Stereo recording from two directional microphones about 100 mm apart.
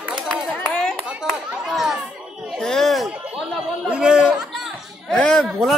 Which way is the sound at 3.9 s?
10° right (ahead or behind).